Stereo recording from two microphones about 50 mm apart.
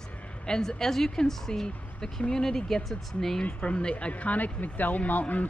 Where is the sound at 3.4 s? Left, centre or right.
Left.